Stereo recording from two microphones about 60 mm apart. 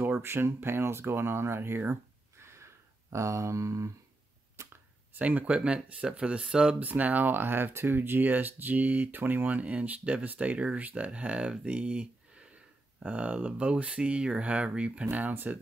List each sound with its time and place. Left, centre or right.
0.2 s speech: right
2.4 s a sound: right
5.1 s speech: right
6.8 s speech: right
15.0 s speech: right